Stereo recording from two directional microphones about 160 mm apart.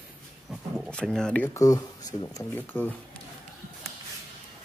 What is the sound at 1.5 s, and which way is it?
Speech, 20° left (ahead or behind).